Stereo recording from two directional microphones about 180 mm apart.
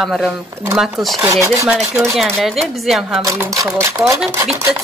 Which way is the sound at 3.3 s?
15° right (ahead or behind).